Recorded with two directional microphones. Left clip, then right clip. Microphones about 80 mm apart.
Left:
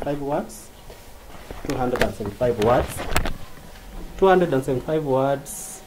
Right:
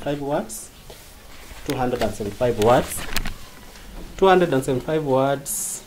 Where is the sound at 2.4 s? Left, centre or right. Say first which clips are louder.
Even; right.